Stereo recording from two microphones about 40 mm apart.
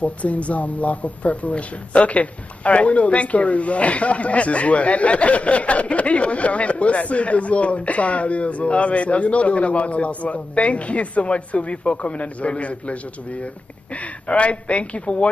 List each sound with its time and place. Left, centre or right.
0.0 s speech: left